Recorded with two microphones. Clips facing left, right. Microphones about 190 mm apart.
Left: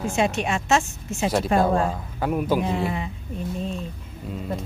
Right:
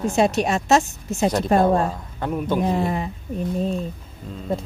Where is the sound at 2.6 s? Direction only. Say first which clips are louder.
Right 3 dB; 40° right (ahead or behind).